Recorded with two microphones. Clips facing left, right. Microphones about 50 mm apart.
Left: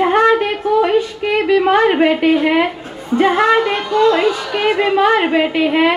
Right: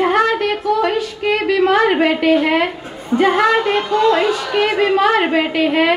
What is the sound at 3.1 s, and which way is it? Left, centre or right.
Speech, centre.